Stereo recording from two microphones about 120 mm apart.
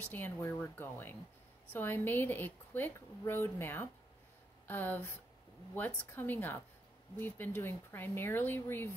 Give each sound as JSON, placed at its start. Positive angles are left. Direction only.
{"t": 0.0, "sound": "a woman's voice", "side_deg": 15}